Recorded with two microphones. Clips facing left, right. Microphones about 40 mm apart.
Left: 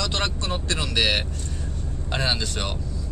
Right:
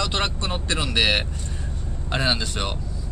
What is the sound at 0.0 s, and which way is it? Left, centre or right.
Vehicle, centre.